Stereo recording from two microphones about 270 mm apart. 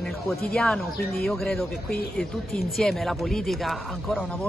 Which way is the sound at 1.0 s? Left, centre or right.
Left.